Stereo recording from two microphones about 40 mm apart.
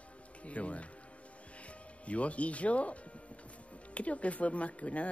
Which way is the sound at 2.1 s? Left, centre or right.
Left.